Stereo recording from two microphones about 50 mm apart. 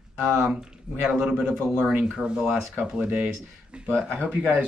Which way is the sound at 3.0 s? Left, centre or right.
Right.